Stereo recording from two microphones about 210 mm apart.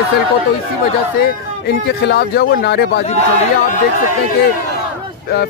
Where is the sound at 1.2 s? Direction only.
50° left (ahead or behind).